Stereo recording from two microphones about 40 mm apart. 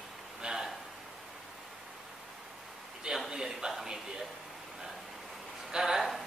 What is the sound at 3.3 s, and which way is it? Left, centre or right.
Speech, centre.